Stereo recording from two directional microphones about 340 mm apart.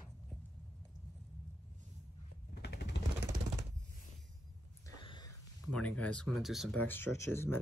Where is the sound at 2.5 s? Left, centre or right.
Left.